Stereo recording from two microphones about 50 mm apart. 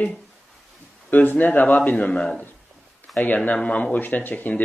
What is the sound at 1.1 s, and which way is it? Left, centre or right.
Speech, left.